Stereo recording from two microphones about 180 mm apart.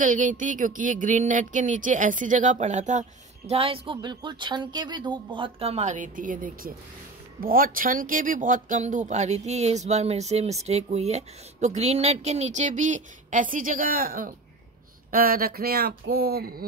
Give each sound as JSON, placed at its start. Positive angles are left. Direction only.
{"t": 0.0, "sound": "speech", "side_deg": -45}